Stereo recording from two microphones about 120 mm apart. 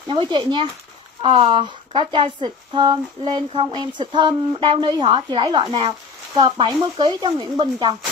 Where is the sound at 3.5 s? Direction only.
50° right (ahead or behind).